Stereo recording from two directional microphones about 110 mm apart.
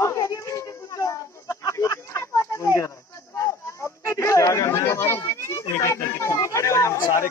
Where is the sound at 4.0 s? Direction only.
25° left (ahead or behind).